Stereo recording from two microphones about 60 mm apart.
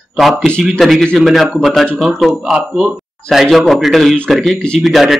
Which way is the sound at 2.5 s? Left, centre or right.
Centre.